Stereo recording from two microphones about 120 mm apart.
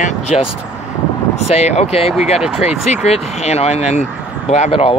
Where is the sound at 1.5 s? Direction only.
65° left (ahead or behind).